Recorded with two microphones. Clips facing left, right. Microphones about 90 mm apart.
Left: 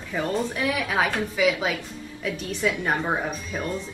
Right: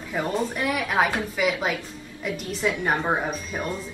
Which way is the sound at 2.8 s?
5° right (ahead or behind).